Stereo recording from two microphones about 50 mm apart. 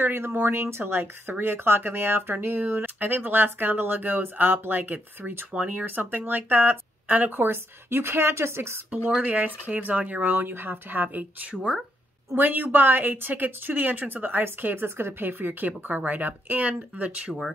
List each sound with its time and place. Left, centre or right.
0.0 s speech: right
9.2 s speech: right
10.3 s speech: right